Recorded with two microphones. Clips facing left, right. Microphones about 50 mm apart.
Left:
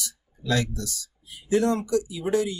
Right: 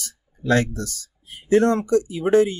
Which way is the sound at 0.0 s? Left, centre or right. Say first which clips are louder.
Right 6 dB; right.